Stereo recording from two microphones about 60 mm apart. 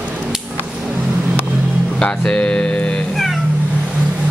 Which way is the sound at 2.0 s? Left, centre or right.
Centre.